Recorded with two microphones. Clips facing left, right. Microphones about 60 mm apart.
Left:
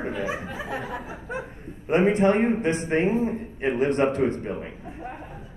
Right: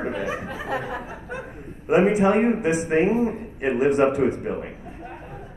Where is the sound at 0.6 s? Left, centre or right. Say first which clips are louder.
Right 6 dB; right.